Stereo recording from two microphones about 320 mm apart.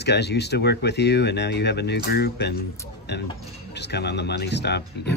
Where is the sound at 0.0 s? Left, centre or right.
Left.